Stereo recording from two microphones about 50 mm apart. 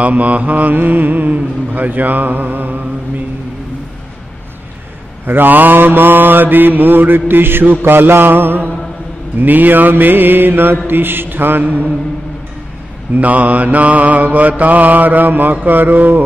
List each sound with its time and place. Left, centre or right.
0.0 s speech: right
5.2 s a man's voice: right
13.1 s speech: right